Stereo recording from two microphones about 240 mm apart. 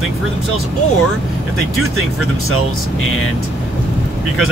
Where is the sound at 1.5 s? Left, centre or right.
Left.